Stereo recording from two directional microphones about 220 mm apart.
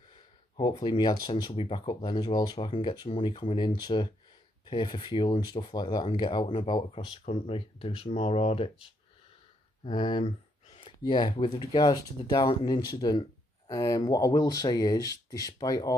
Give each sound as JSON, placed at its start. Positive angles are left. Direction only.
{"t": 0.1, "sound": "speech", "side_deg": 20}
{"t": 9.8, "sound": "speech", "side_deg": 20}